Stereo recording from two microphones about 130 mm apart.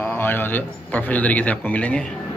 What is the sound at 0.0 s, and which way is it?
A man's voice, 15° left (ahead or behind).